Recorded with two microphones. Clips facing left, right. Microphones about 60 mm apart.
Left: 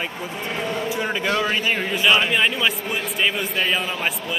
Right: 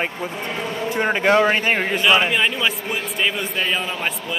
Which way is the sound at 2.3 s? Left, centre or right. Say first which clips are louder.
Even; centre.